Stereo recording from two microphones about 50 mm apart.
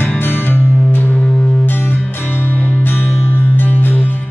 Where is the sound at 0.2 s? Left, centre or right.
Left.